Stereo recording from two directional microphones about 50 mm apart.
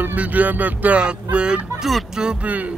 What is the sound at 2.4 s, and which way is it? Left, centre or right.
Speech, right.